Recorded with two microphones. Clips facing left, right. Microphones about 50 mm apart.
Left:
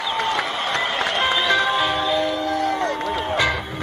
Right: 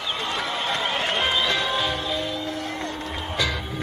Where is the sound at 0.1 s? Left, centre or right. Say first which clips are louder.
Left 4 dB; left.